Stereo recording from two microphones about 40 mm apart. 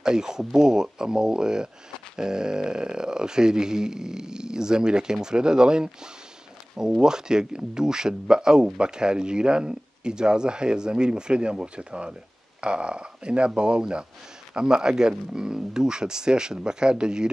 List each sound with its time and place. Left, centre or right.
0.0 s speech: centre
7.0 s speech: centre